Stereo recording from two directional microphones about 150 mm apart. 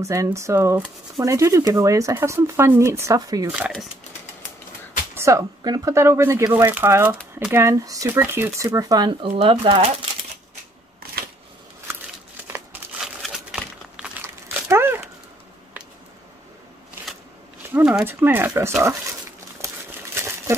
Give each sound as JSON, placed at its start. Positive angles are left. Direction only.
{"t": 0.0, "sound": "speech", "side_deg": -20}
{"t": 3.5, "sound": "speech", "side_deg": -5}
{"t": 5.1, "sound": "speech", "side_deg": -20}
{"t": 12.5, "sound": "crumpling", "side_deg": -10}
{"t": 14.2, "sound": "crumpling", "side_deg": -15}
{"t": 17.7, "sound": "speech", "side_deg": -10}
{"t": 20.2, "sound": "a sound", "side_deg": -15}